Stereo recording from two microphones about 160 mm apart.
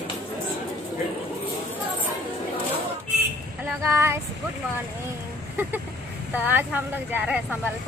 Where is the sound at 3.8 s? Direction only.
15° right (ahead or behind).